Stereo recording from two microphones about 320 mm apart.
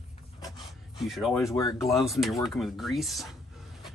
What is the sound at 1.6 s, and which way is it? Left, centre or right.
Speech, centre.